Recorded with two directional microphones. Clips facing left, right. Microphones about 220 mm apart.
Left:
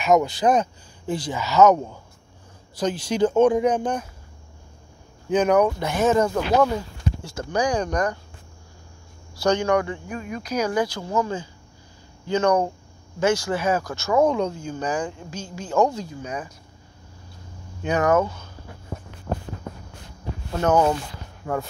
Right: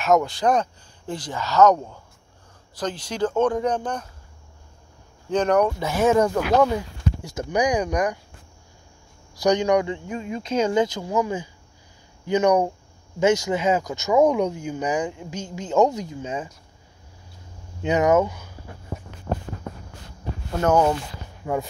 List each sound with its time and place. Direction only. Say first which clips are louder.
0.0 s speech: left 1 dB; centre (ahead or behind)
5.3 s speech: left 1 dB; 5° left (ahead or behind)
6.2 s speech: right 1 dB; 5° left (ahead or behind)
6.7 s speech: right 1 dB; 15° right (ahead or behind)
9.4 s speech: right 1 dB; 15° right (ahead or behind)
17.8 s speech: right 1 dB; 20° right (ahead or behind)
20.6 s speech: even; 10° right (ahead or behind)